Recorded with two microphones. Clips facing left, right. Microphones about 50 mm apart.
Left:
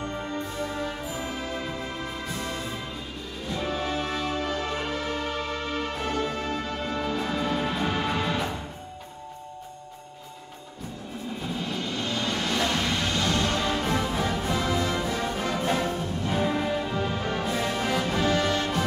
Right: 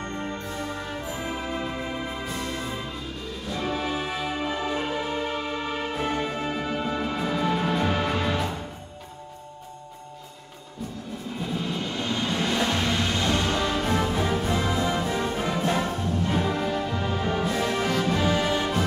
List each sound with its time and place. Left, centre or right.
0.0 s music: centre
0.6 s music: centre
1.2 s music: centre
3.5 s music: centre
12.0 s music: centre
13.8 s music: centre
16.3 s music: centre
18.2 s music: centre